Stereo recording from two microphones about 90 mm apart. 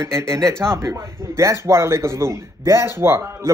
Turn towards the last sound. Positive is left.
turn(degrees=-30)  # may be behind; listen again after turning